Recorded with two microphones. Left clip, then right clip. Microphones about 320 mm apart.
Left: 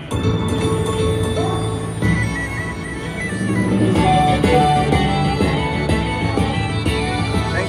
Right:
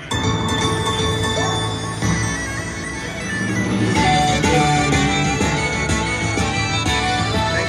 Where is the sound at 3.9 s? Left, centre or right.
Centre.